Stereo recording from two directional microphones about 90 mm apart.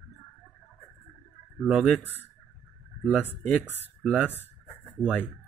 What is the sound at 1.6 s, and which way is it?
Speech, 10° right (ahead or behind).